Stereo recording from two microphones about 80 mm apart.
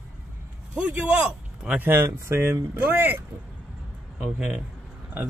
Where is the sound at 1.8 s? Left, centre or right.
Right.